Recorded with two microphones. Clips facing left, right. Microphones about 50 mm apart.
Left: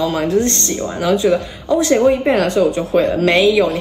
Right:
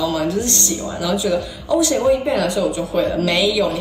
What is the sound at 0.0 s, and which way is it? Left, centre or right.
Speech, left.